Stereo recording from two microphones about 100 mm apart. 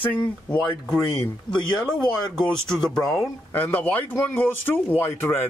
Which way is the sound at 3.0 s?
30° left (ahead or behind).